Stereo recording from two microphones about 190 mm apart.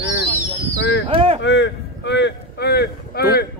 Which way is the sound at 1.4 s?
65° left (ahead or behind).